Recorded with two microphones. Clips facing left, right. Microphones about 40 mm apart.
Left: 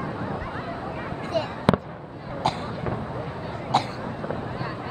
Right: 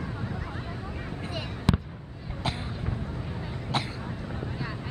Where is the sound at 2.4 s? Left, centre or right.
Centre.